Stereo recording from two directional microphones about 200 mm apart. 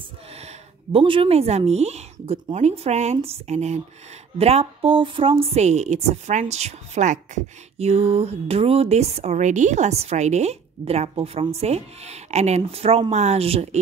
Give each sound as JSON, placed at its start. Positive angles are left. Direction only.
{"t": 0.9, "sound": "speech", "side_deg": -25}